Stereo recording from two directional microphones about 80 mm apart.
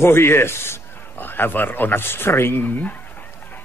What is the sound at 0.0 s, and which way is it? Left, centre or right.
Speech, left.